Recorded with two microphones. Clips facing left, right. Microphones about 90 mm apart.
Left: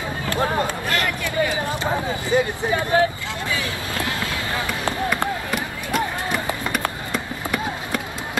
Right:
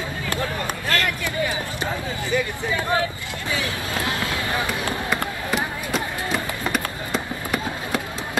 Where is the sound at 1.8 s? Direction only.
20° left (ahead or behind).